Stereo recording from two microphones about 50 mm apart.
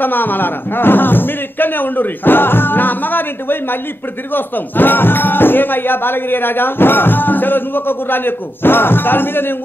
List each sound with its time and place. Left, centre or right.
0.0 s speech: left